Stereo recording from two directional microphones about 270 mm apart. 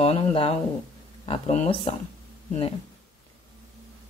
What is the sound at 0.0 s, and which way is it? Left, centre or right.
Speech, left.